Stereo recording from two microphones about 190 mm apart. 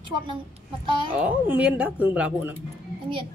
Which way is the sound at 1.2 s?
10° right (ahead or behind).